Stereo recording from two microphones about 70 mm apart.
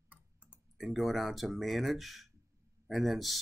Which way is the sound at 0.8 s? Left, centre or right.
Centre.